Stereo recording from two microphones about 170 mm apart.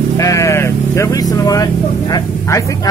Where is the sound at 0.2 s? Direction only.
20° left (ahead or behind).